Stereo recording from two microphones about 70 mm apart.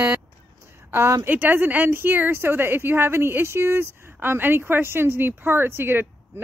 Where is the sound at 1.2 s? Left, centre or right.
Right.